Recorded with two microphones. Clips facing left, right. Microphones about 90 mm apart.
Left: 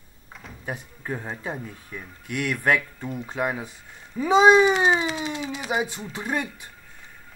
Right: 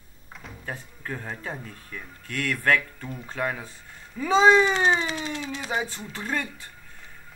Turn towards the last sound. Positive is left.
turn(degrees=15)  # may be behind; listen again after turning